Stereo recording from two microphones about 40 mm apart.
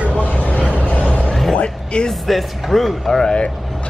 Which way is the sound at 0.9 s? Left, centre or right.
Left.